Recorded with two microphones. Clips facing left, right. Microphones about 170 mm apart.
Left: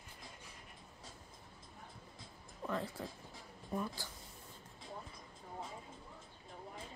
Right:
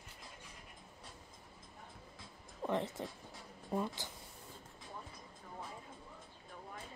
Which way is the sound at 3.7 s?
20° right (ahead or behind).